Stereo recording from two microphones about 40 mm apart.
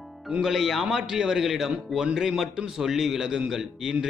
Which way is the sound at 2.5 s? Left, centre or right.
Centre.